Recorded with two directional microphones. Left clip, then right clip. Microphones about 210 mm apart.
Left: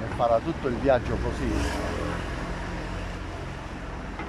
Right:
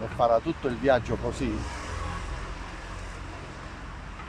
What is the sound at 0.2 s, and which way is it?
Speech, centre (ahead or behind).